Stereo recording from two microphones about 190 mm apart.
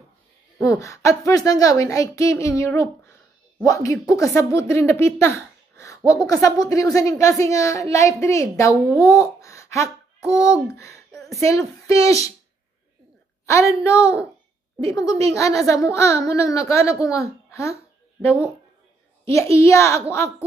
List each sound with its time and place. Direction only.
0.6 s a woman's voice: 15° left (ahead or behind)
11.1 s a sound: centre (ahead or behind)
11.3 s a woman's voice: 15° left (ahead or behind)
13.5 s a woman's voice: 15° left (ahead or behind)
19.2 s a child's voice: 15° left (ahead or behind)